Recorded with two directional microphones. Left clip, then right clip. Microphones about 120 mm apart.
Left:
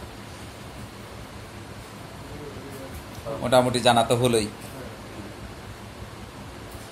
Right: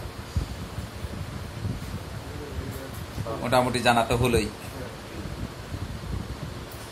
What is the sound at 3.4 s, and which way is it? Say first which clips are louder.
A man's voice: left 3 dB; 25° left (ahead or behind).